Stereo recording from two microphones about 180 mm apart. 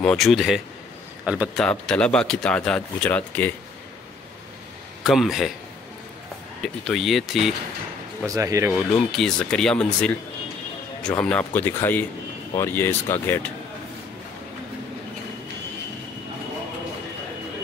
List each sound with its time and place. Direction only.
0.0 s speech: centre (ahead or behind)
1.6 s speech: 5° left (ahead or behind)
5.0 s speech: centre (ahead or behind)
6.6 s speech: centre (ahead or behind)
8.3 s speech: 20° right (ahead or behind)
8.9 s speech: 5° left (ahead or behind)